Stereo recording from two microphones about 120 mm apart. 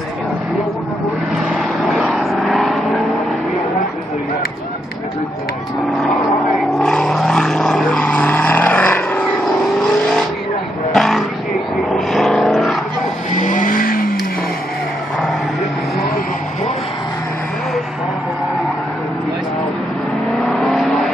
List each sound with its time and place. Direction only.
1.9 s vehicle: centre (ahead or behind)
5.9 s vehicle: 5° left (ahead or behind)
9.4 s vehicle: centre (ahead or behind)
13.3 s vehicle: 90° left
20.4 s vehicle: centre (ahead or behind)